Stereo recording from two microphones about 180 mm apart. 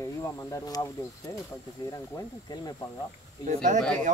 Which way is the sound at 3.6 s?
45° right (ahead or behind).